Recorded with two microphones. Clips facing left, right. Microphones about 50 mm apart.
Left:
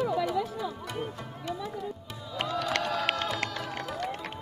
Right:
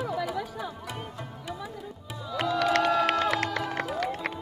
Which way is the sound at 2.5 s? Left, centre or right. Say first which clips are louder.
Right 7 dB; right.